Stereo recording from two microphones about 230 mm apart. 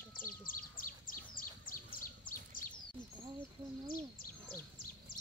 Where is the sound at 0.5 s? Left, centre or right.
Left.